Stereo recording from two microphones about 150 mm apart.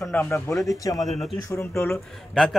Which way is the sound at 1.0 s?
Centre (ahead or behind).